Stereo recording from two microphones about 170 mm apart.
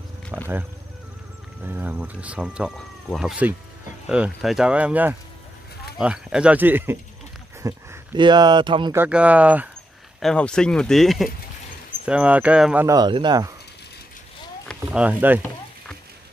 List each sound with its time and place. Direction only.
0.3 s wild animals: 10° right (ahead or behind)
1.6 s speech: 10° right (ahead or behind); by 8.9 s 25° right (ahead or behind)
8.9 s speech: 10° right (ahead or behind)
10.2 s speech: 5° left (ahead or behind)
12.8 s speech: 25° right (ahead or behind)
14.9 s speech: 10° right (ahead or behind)